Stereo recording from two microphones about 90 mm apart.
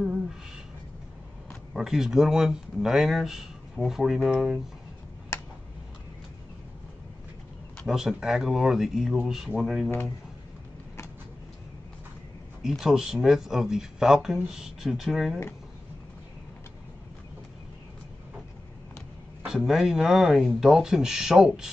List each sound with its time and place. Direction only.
1.7 s speech: 5° right (ahead or behind)
5.3 s a sound: 30° left (ahead or behind)
7.8 s speech: 5° right (ahead or behind)
12.6 s speech: 5° right (ahead or behind)
19.4 s speech: 5° right (ahead or behind)